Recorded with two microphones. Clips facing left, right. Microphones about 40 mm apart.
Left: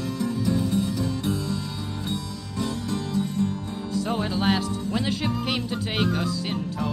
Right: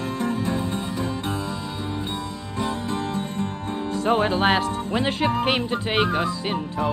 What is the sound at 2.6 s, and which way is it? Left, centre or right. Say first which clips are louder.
Music: right 3 dB; right.